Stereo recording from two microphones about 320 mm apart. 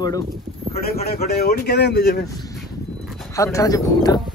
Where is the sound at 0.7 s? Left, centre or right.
Left.